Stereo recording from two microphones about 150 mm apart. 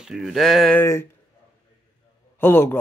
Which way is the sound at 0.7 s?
15° left (ahead or behind).